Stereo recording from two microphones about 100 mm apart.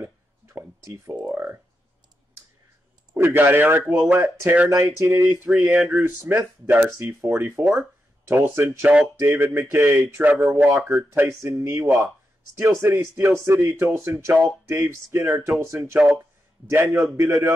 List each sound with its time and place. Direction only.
0.0 s a sound: 25° right (ahead or behind)
1.2 s speech: 25° right (ahead or behind)
3.2 s a man's voice: 20° right (ahead or behind)
5.5 s a man's voice: 5° right (ahead or behind); by 8.7 s 25° right (ahead or behind)
8.8 s speech: 10° right (ahead or behind)
9.3 s a man's voice: 25° right (ahead or behind)